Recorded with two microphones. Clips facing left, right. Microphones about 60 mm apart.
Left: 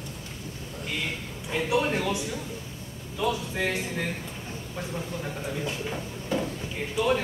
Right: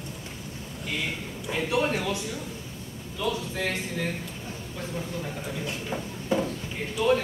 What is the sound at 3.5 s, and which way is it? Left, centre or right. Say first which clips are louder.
Speech: left 1 dB; centre.